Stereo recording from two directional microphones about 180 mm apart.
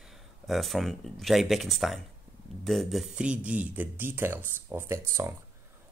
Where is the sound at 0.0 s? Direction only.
Centre (ahead or behind).